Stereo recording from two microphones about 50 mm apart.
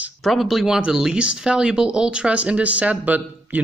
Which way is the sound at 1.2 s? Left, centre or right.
Right.